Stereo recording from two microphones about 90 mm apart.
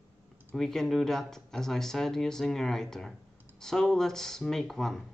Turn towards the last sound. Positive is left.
turn(degrees=5)  # may be behind; listen again after turning